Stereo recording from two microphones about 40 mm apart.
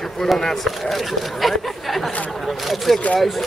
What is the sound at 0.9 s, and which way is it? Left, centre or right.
Chatter, centre.